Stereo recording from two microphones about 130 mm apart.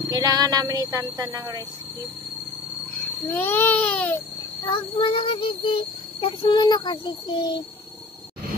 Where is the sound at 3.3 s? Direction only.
15° left (ahead or behind).